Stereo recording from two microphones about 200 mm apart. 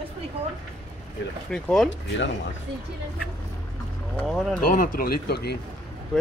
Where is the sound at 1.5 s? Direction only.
5° left (ahead or behind).